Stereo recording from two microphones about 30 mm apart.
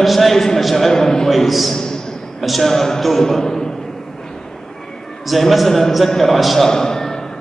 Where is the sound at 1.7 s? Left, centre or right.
Centre.